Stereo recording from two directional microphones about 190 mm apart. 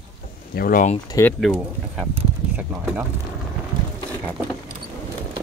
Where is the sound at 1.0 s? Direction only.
15° left (ahead or behind).